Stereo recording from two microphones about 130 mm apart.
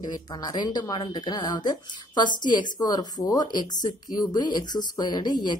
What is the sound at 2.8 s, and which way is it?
Speech, 30° left (ahead or behind).